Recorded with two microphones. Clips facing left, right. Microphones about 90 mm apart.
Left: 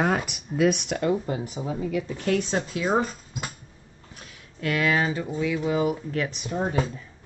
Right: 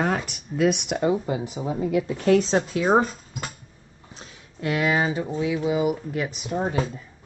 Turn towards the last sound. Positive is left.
turn(degrees=-10)  # may be behind; listen again after turning